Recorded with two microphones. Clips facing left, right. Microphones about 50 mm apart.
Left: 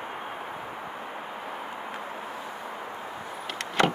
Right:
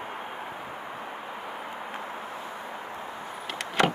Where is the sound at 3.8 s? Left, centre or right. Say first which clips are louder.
Even; centre.